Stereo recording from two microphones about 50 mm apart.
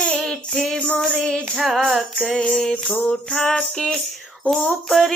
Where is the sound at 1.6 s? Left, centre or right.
Centre.